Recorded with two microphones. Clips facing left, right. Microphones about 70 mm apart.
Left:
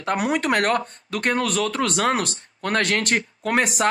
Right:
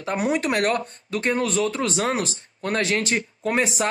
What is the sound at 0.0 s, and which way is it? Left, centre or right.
Speech, left.